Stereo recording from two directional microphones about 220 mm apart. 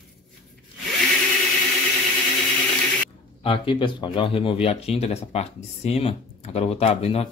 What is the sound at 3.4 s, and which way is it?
Speech, 25° left (ahead or behind).